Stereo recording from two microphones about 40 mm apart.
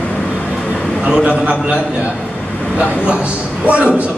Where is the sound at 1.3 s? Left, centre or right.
Right.